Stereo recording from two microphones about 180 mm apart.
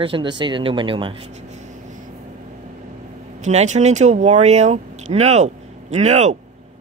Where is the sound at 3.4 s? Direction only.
40° right (ahead or behind).